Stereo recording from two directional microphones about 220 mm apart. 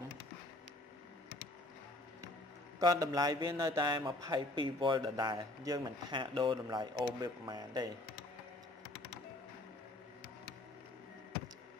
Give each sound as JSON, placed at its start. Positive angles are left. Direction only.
{"t": 2.8, "sound": "a man's voice", "side_deg": -15}